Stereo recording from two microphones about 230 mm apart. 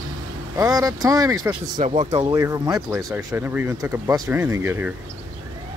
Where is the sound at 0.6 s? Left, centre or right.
Centre.